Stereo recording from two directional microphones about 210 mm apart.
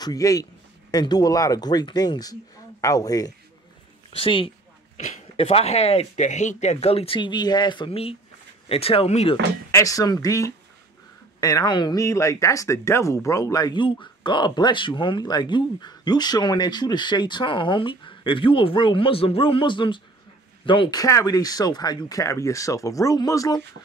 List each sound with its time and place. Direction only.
0.0 s speech: 15° left (ahead or behind)
9.7 s speech: 15° left (ahead or behind)